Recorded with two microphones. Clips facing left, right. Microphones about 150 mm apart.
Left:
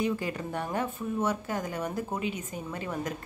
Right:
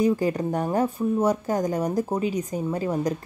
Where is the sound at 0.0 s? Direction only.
40° right (ahead or behind).